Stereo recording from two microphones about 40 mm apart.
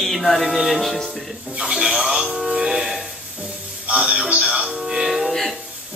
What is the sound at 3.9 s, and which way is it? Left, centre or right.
Speech, right.